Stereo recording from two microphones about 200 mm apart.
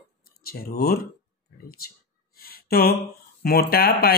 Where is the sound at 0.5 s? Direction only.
50° left (ahead or behind).